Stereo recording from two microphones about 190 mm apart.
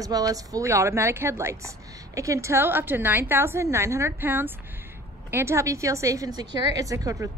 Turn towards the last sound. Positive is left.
turn(degrees=-15)  # may be behind; listen again after turning